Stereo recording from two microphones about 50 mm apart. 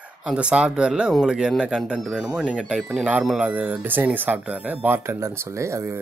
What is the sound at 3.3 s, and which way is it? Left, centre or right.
Speech, right.